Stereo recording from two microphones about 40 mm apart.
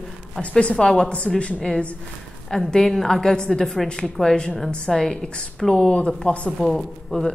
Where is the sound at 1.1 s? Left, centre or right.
Left.